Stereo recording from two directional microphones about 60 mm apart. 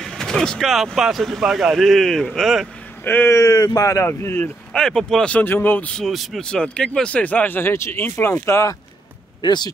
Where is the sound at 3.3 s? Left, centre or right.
Left.